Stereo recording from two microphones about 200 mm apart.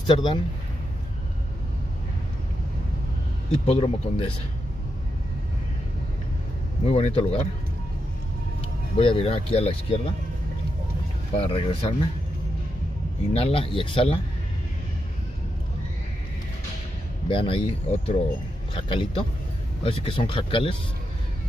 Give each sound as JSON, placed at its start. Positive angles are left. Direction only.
{"t": 0.0, "sound": "speech", "side_deg": 25}
{"t": 3.5, "sound": "speech", "side_deg": 30}
{"t": 6.9, "sound": "speech", "side_deg": 30}
{"t": 8.5, "sound": "speech", "side_deg": 25}
{"t": 11.3, "sound": "speech", "side_deg": 30}
{"t": 13.3, "sound": "speech", "side_deg": 30}
{"t": 17.3, "sound": "speech", "side_deg": 25}